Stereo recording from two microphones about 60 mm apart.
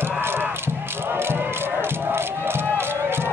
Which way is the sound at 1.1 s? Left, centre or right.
Right.